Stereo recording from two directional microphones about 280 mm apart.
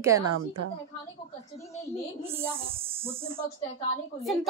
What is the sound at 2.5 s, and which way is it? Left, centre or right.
Speech, centre.